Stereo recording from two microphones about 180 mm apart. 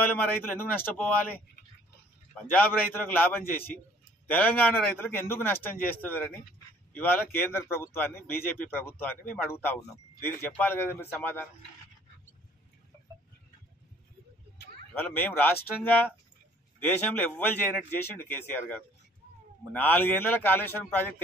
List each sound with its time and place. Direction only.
0.0 s a man's voice: 10° left (ahead or behind)
2.3 s a man's voice: 10° left (ahead or behind)
15.0 s a man's voice: 10° left (ahead or behind)